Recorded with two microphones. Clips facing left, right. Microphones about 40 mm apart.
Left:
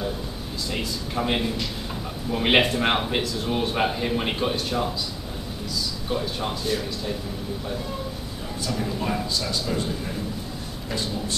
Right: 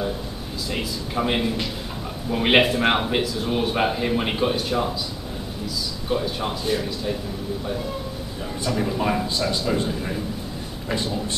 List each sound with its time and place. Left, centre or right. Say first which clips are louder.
0.7 s a man's voice: right 2 dB; centre
6.0 s a man's voice: right 4 dB; centre
8.6 s a man's voice: right 4 dB; centre